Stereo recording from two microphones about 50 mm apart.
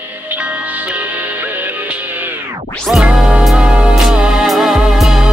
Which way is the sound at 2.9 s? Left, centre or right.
Centre.